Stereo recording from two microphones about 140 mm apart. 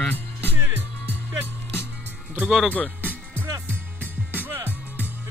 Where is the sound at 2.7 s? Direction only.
10° left (ahead or behind).